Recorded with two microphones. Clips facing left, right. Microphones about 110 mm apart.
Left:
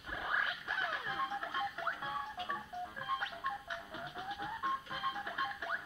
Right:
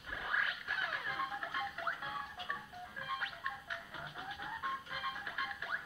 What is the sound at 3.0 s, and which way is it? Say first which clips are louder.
Music: left 1 dB; 25° left (ahead or behind).